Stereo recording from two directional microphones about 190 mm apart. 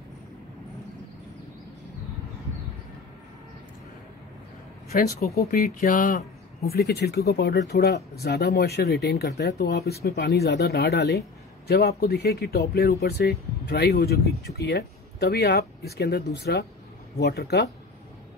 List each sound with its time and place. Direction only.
4.9 s speech: 55° left (ahead or behind)